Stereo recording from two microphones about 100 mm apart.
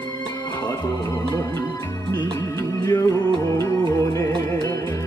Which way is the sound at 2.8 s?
35° left (ahead or behind).